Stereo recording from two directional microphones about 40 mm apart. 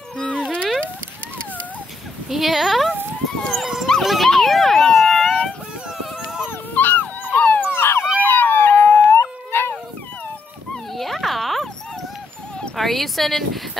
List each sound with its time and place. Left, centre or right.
0.2 s music: left
2.2 s speech: centre
3.6 s dog: centre
4.3 s police car: centre
5.3 s dog: centre
6.5 s dog: left
7.6 s police car: left
8.2 s howl: left
9.1 s howl: left
11.0 s dog: centre
12.7 s speech: centre